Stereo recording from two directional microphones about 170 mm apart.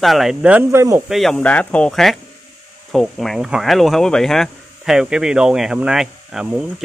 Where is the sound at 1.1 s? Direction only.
Centre (ahead or behind).